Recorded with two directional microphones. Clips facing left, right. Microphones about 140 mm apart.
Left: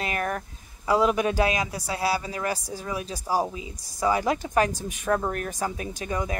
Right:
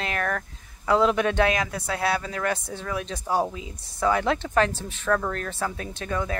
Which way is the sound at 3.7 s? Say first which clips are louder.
Even; 35° left (ahead or behind).